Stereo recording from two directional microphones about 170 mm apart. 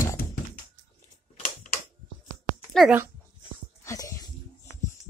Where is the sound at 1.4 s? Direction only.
45° left (ahead or behind).